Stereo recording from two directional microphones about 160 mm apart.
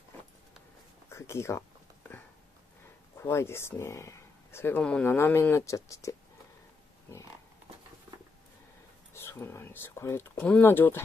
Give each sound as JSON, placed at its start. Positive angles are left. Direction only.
{"t": 1.0, "sound": "speech", "side_deg": 15}
{"t": 3.2, "sound": "speech", "side_deg": 15}
{"t": 9.1, "sound": "speech", "side_deg": 15}